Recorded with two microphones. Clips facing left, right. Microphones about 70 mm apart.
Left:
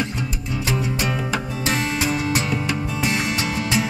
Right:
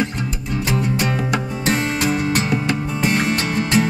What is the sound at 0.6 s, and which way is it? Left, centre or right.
Music, centre.